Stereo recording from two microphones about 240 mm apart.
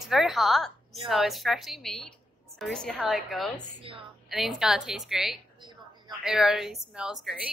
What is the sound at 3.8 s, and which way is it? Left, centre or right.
Speech, right.